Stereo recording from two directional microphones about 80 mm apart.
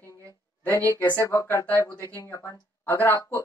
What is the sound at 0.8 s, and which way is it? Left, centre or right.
Speech, left.